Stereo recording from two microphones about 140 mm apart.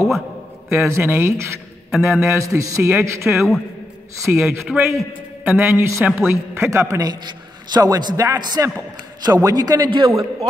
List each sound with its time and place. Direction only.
0.7 s a man's voice: 15° right (ahead or behind)
1.9 s a man's voice: 5° right (ahead or behind)
2.1 s a man's voice: 20° right (ahead or behind)
3.3 s a man's voice: centre (ahead or behind)
4.2 s a man's voice: 15° right (ahead or behind); by 10.1 s 35° right (ahead or behind)